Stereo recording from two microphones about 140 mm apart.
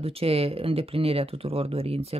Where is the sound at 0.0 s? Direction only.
45° right (ahead or behind).